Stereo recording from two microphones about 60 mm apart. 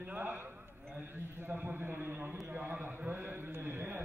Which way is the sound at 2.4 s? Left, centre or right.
Right.